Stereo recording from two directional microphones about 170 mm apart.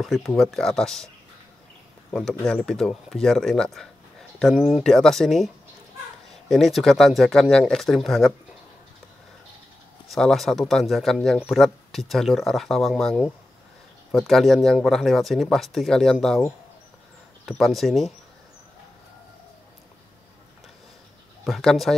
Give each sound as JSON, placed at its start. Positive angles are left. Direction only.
{"t": 0.0, "sound": "speech", "side_deg": 0}
{"t": 2.1, "sound": "speech", "side_deg": 5}
{"t": 6.5, "sound": "speech", "side_deg": 0}
{"t": 10.0, "sound": "speech", "side_deg": 0}
{"t": 17.5, "sound": "speech", "side_deg": 0}
{"t": 21.5, "sound": "speech", "side_deg": 0}